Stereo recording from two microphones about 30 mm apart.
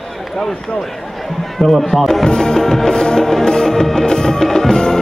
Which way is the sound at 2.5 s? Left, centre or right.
Centre.